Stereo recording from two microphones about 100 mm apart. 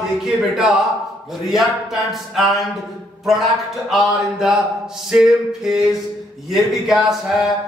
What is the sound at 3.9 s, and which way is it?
Speech, 5° right (ahead or behind).